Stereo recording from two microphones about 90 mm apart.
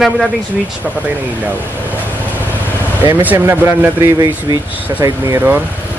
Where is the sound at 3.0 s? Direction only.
20° right (ahead or behind).